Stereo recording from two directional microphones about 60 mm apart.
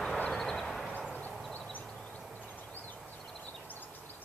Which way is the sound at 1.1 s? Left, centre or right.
Left.